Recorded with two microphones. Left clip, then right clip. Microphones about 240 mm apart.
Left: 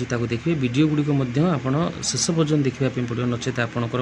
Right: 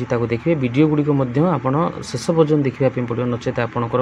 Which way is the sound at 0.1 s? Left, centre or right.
Centre.